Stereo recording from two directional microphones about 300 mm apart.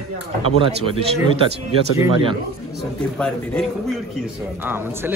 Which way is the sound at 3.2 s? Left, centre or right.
Centre.